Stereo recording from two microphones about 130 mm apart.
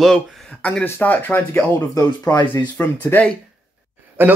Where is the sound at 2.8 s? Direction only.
15° left (ahead or behind).